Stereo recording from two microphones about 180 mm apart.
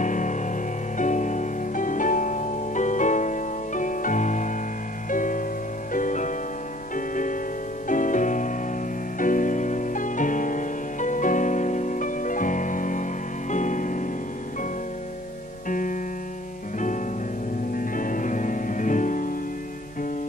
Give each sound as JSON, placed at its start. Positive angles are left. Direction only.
{"t": 0.0, "sound": "music", "side_deg": 45}
{"t": 15.7, "sound": "music", "side_deg": 50}
{"t": 17.7, "sound": "music", "side_deg": 50}